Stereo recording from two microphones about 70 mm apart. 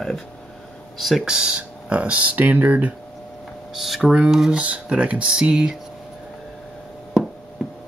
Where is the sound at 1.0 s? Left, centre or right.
Centre.